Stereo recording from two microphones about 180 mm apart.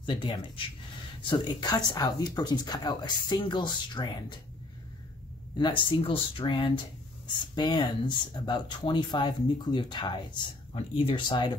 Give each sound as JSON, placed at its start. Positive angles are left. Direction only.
{"t": 0.0, "sound": "speech", "side_deg": 30}
{"t": 5.6, "sound": "speech", "side_deg": 25}